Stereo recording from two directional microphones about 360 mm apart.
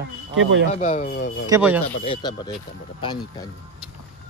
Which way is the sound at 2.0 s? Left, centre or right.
Centre.